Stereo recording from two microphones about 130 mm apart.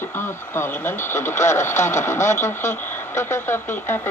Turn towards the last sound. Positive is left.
turn(degrees=20)  # may be behind; listen again after turning